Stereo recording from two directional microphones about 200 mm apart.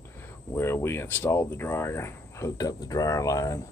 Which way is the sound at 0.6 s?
10° left (ahead or behind).